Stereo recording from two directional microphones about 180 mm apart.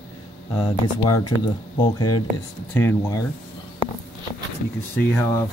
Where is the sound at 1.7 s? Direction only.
25° left (ahead or behind).